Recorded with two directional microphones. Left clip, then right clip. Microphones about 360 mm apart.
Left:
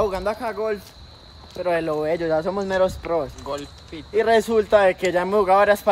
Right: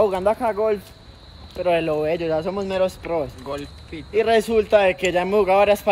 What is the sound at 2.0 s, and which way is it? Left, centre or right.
Speech, left.